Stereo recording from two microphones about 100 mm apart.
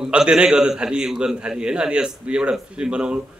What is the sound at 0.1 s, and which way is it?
A man's voice, 10° right (ahead or behind).